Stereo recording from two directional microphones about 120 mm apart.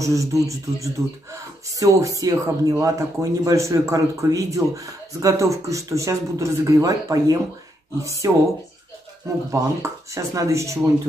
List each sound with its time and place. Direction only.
0.0 s speech: 25° right (ahead or behind)
9.5 s speech: 25° right (ahead or behind)